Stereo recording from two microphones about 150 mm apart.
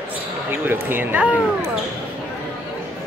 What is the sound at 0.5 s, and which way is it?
Speech, 15° right (ahead or behind).